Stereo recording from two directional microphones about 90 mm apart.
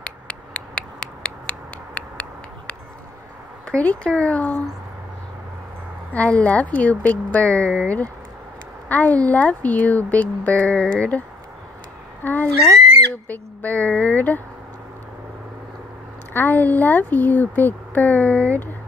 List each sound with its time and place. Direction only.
0.0 s a sound: 15° left (ahead or behind)
3.6 s speech: 15° left (ahead or behind)
6.1 s speech: 15° left (ahead or behind)
16.3 s speech: 20° left (ahead or behind)